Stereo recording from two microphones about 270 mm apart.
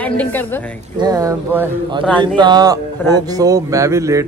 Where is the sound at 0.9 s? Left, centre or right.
Centre.